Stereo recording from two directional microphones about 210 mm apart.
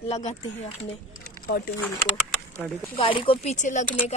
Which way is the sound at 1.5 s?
50° left (ahead or behind).